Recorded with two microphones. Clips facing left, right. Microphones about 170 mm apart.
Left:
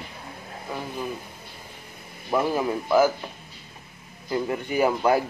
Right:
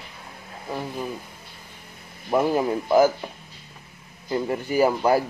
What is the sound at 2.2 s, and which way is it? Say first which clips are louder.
Speech: right 2 dB; 15° right (ahead or behind).